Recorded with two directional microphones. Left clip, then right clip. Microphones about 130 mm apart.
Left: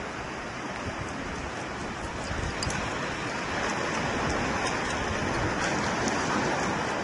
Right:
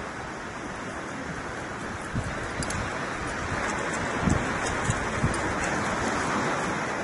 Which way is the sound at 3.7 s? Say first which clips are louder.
Even; 25° left (ahead or behind).